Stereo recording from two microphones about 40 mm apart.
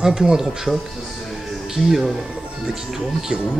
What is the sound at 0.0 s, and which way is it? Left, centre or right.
Speech, centre.